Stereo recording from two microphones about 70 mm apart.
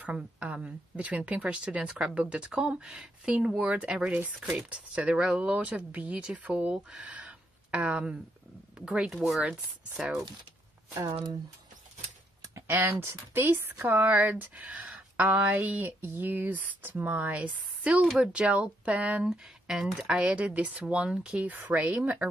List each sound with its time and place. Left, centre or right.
0.0 s speech: right
10.9 s speech: right
12.4 s a sound: right
13.0 s speech: right
18.0 s speech: centre